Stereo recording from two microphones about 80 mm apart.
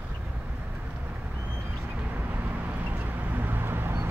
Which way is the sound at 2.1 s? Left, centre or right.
Right.